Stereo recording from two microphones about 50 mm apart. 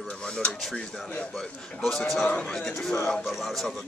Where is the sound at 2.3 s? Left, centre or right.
Left.